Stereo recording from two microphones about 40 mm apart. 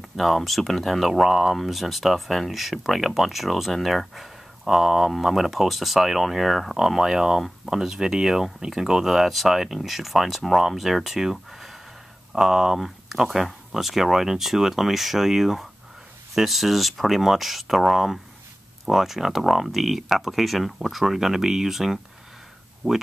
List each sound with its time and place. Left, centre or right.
0.1 s speech: centre
7.0 s speech: centre
22.8 s speech: centre